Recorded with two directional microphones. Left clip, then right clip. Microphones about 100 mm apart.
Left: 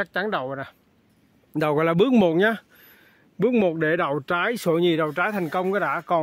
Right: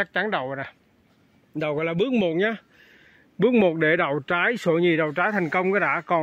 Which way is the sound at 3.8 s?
20° left (ahead or behind).